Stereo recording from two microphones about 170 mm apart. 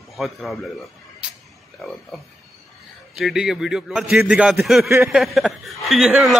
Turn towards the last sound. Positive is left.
turn(degrees=0)  # may be behind; listen again after turning